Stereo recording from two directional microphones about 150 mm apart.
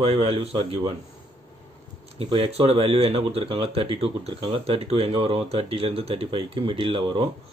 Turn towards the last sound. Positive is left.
turn(degrees=-40)  # may be behind; listen again after turning